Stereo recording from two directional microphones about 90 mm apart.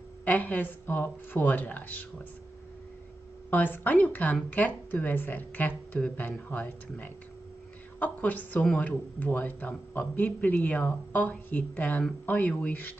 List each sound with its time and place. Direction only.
0.2 s speech: 20° left (ahead or behind)
3.4 s speech: 20° left (ahead or behind)